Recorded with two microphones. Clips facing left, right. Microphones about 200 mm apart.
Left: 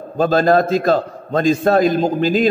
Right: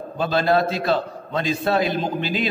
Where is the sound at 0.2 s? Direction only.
45° left (ahead or behind).